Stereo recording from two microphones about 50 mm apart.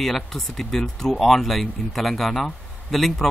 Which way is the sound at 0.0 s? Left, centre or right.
Centre.